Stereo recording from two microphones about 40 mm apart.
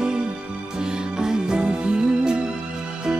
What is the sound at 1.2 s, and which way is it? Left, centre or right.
Music, centre.